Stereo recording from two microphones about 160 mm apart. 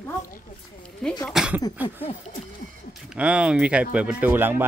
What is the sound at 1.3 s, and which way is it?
Speech, 5° right (ahead or behind).